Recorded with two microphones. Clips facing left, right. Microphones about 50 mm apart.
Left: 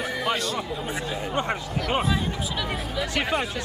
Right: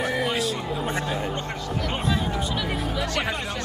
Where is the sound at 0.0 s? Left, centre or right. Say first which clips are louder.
Right 2 dB; centre.